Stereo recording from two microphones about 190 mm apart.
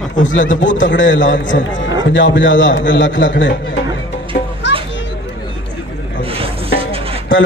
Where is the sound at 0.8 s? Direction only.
80° left.